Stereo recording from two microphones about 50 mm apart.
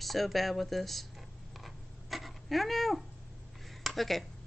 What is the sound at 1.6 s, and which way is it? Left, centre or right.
Cat, centre.